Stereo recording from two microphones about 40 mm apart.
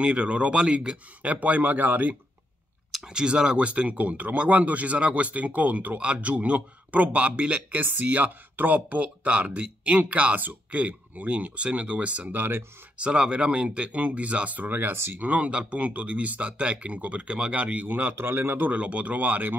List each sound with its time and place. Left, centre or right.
0.0 s speech: right
3.1 s speech: right
6.2 s speech: right
7.8 s speech: right
12.3 s speech: right
12.9 s speech: right
15.1 s speech: right
18.1 s a man's voice: right
18.7 s speech: right